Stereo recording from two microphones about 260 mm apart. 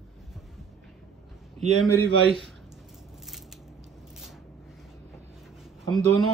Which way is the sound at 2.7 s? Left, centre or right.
Centre.